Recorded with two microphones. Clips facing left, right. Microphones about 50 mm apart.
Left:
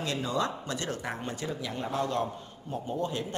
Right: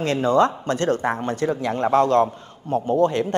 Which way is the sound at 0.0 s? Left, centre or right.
Right.